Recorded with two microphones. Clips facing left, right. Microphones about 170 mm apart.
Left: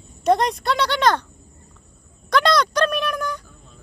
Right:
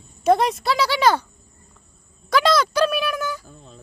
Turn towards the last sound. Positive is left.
turn(degrees=-5)  # may be behind; listen again after turning